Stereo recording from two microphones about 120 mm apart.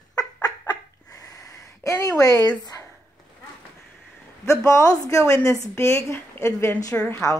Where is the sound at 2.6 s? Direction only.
35° left (ahead or behind).